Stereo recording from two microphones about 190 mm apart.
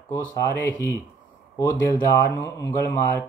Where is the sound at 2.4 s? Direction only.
15° left (ahead or behind).